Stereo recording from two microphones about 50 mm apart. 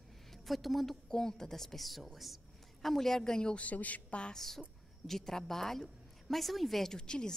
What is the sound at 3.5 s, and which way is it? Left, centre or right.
Speech, left.